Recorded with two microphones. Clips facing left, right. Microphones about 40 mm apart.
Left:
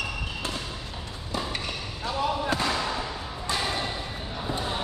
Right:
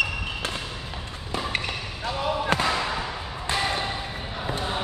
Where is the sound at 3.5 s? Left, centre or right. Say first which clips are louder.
Right 3 dB; right.